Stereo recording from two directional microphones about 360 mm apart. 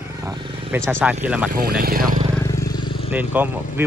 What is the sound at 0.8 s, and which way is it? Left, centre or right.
Speech, centre.